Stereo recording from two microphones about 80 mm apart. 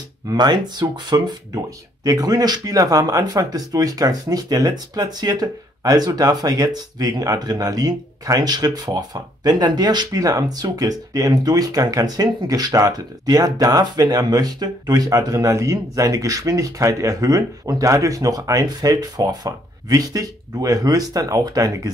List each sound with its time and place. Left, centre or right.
0.3 s speech: right